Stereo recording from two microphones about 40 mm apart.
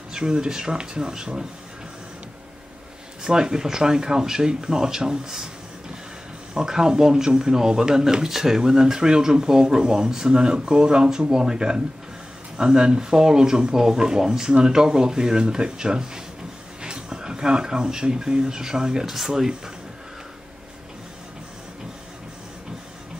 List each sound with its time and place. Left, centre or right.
0.1 s speech: right
3.3 s speech: centre
6.5 s speech: centre